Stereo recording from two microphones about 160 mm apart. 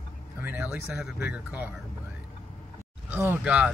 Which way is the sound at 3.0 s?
10° right (ahead or behind).